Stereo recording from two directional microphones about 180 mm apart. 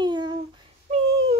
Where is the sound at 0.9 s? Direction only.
35° right (ahead or behind).